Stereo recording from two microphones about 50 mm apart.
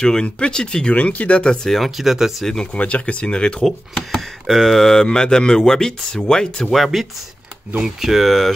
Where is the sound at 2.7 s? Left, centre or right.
Left.